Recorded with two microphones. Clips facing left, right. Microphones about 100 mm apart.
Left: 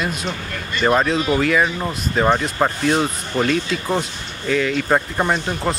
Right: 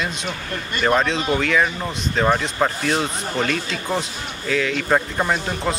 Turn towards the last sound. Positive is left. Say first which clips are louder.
# left 2 dB
turn(degrees=0)  # may be behind; listen again after turning